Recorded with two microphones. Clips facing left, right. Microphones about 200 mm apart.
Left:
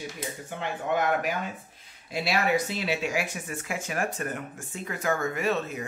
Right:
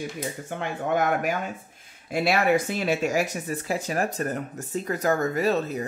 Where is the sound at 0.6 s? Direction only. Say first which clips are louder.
Right 2 dB; 50° right (ahead or behind).